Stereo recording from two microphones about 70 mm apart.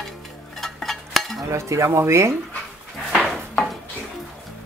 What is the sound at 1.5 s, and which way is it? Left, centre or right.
Speech, right.